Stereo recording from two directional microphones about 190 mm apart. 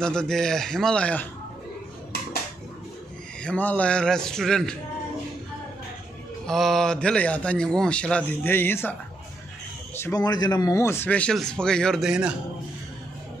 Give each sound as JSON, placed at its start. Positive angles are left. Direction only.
{"t": 0.0, "sound": "a man's voice", "side_deg": 5}
{"t": 3.4, "sound": "a man's voice", "side_deg": 10}
{"t": 6.4, "sound": "a man's voice", "side_deg": 0}
{"t": 9.9, "sound": "speech", "side_deg": 15}